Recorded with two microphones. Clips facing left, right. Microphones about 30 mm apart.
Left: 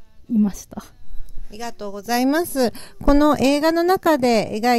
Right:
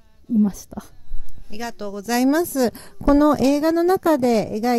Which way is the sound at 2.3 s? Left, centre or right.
Left.